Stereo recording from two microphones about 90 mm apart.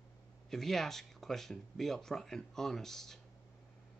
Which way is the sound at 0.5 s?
5° left (ahead or behind).